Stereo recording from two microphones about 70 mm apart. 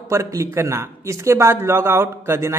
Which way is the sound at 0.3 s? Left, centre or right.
Right.